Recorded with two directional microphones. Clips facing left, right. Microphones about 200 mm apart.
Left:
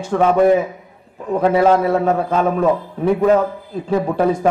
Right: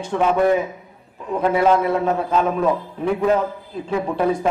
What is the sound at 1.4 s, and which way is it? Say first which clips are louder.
Speech: left 3 dB; 35° left (ahead or behind).